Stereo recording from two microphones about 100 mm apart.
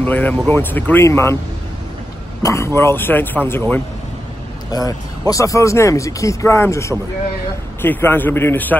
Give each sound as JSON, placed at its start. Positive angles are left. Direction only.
{"t": 0.0, "sound": "speech", "side_deg": 15}
{"t": 2.4, "sound": "speech", "side_deg": 30}
{"t": 4.6, "sound": "speech", "side_deg": 40}